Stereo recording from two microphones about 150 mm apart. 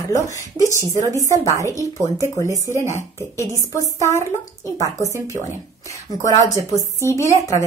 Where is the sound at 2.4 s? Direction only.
20° right (ahead or behind).